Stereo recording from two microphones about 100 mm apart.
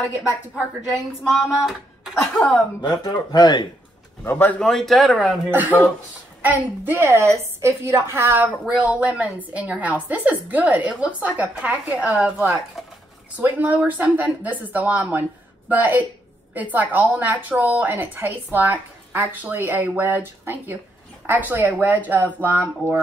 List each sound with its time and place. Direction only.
0.9 s speech: centre (ahead or behind)
2.8 s a man's voice: 50° left (ahead or behind)
4.2 s a man's voice: 20° left (ahead or behind)
4.6 s speech: 5° left (ahead or behind)
5.5 s a woman's voice: 15° right (ahead or behind)